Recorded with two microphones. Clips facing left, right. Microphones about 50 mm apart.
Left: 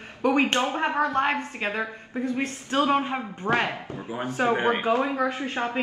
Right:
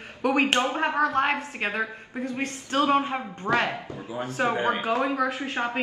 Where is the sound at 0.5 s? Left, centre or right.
Right.